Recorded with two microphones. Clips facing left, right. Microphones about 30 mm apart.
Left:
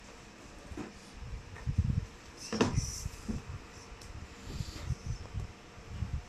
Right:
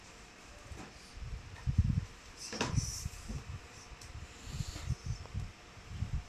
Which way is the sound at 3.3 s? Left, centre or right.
Left.